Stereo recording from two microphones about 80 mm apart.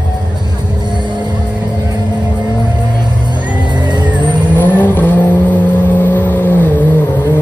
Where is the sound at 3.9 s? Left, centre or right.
Centre.